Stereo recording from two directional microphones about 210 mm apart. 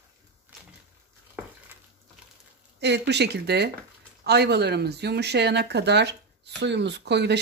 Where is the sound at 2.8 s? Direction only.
55° right (ahead or behind).